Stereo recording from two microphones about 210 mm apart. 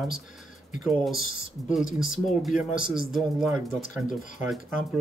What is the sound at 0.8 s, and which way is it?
Speech, centre (ahead or behind).